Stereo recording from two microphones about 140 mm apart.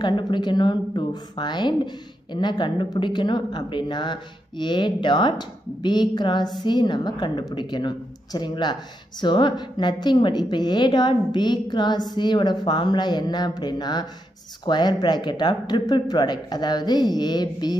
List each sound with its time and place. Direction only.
0.0 s a woman's voice: 35° left (ahead or behind)